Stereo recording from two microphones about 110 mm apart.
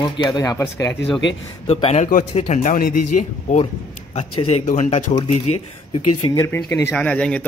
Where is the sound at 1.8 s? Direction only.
70° left (ahead or behind).